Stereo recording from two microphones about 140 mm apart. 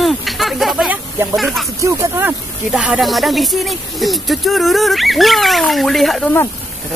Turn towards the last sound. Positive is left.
turn(degrees=0)  # may be behind; listen again after turning